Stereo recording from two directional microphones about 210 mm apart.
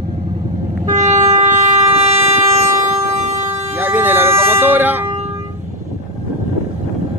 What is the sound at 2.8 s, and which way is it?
Vehicle, 10° right (ahead or behind).